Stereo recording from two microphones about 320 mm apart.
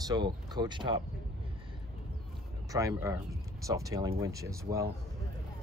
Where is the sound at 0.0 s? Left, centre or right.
Centre.